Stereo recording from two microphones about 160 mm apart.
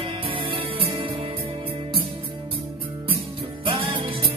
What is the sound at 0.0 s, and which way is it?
Music, 35° right (ahead or behind).